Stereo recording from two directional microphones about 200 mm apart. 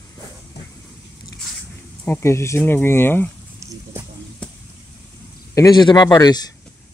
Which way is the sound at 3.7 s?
15° right (ahead or behind).